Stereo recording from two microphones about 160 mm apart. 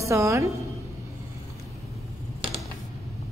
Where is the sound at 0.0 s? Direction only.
20° right (ahead or behind).